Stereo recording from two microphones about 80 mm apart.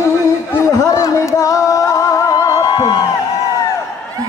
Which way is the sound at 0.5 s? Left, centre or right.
Left.